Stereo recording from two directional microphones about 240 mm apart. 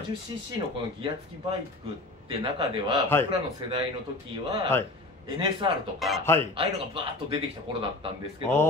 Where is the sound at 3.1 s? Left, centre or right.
Centre.